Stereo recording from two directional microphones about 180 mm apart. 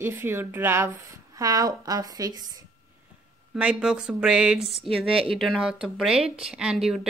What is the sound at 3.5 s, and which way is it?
Speech, 5° right (ahead or behind).